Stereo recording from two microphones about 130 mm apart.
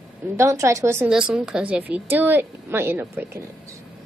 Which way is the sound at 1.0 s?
5° right (ahead or behind).